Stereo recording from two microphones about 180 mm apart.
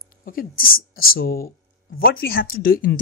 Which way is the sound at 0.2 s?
50° left (ahead or behind).